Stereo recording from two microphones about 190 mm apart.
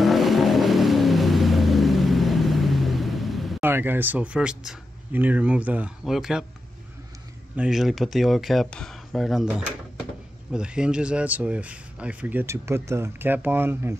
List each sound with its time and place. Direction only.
0.0 s vehicle: centre (ahead or behind)
3.6 s speech: 10° right (ahead or behind)
7.5 s speech: 5° right (ahead or behind)